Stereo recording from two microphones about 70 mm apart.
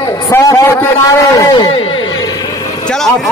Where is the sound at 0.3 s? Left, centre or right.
Left.